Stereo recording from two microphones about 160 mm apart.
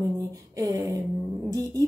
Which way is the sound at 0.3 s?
20° right (ahead or behind).